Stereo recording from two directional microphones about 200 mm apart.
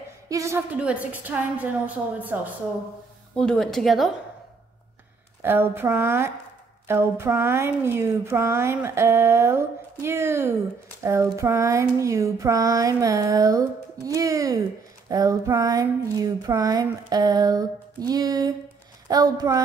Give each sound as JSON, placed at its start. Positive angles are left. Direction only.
{"t": 0.3, "sound": "speech", "side_deg": -15}
{"t": 3.3, "sound": "a woman's voice", "side_deg": 5}
{"t": 5.4, "sound": "speech", "side_deg": -10}
{"t": 15.0, "sound": "a sound", "side_deg": -15}
{"t": 19.0, "sound": "speech", "side_deg": -20}